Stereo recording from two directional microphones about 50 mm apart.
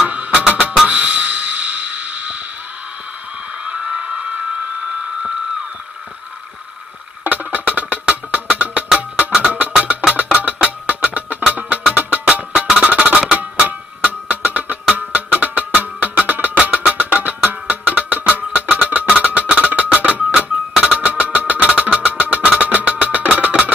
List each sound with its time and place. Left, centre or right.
0.1 s music: right
3.5 s a sound: centre
7.2 s music: right
12.5 s music: centre
12.8 s music: right
14.4 s music: right